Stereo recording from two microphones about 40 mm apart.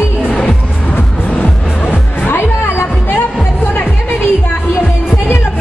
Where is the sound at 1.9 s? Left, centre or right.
Left.